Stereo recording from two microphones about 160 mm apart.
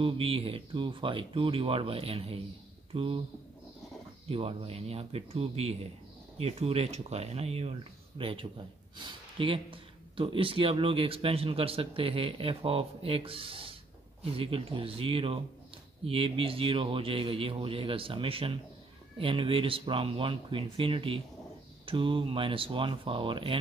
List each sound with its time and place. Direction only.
0.0 s speech: 35° right (ahead or behind)
4.3 s speech: 35° right (ahead or behind)